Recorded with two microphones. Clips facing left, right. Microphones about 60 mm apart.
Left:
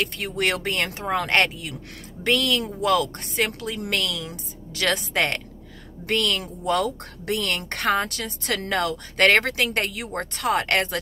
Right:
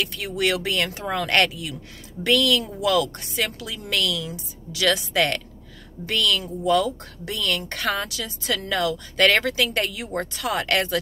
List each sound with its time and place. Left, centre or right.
0.0 s a woman's voice: left
6.4 s a woman's voice: left